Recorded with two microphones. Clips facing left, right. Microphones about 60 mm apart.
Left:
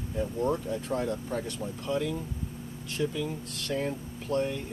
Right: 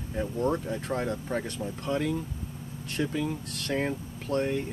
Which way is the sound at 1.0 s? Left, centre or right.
Right.